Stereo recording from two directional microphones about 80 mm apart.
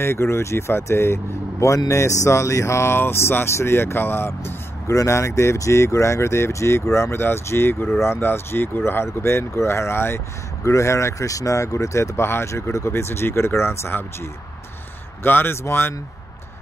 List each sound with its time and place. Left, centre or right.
0.0 s speech: left
4.9 s speech: left
15.2 s speech: left